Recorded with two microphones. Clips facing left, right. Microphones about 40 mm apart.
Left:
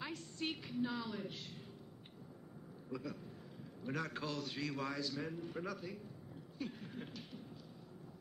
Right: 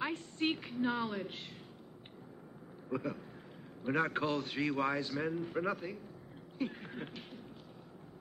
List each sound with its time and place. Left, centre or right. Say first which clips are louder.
0.0 s a woman's voice: right 8 dB; right
2.9 s a man's voice: right 7 dB; right